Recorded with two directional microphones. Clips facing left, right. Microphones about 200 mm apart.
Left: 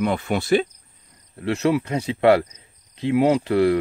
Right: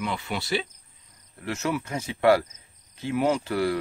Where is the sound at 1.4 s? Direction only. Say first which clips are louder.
Left 8 dB; 30° left (ahead or behind).